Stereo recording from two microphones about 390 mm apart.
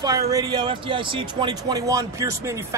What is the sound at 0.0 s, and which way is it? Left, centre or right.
Speech, centre.